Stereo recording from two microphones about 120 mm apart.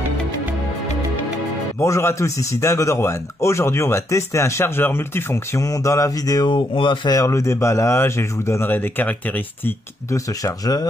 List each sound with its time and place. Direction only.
1.8 s a man's voice: 25° left (ahead or behind); by 7.2 s 45° left (ahead or behind)
7.2 s a man's voice: 25° left (ahead or behind)
9.7 s speech: 25° left (ahead or behind)